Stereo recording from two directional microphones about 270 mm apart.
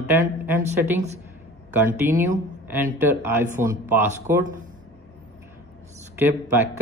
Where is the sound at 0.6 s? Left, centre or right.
Right.